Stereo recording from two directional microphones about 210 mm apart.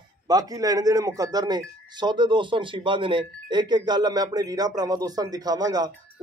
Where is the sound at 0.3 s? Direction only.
15° right (ahead or behind).